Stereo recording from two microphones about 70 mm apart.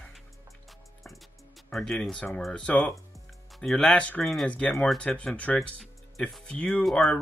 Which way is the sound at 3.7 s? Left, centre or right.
Centre.